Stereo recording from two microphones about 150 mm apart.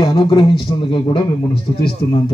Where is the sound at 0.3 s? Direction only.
35° left (ahead or behind).